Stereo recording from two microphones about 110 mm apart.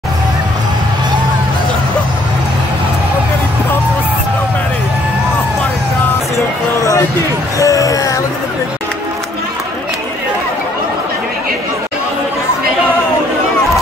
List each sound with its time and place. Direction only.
7.5 s music: 30° left (ahead or behind)